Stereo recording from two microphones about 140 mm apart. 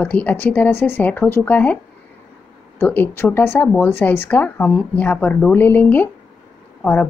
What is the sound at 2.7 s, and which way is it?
A woman's voice, 15° left (ahead or behind).